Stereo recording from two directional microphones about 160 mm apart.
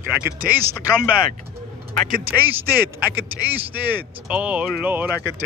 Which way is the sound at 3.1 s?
10° right (ahead or behind).